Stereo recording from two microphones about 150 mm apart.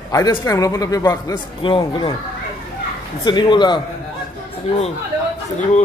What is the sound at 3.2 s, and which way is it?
Speech, 30° left (ahead or behind).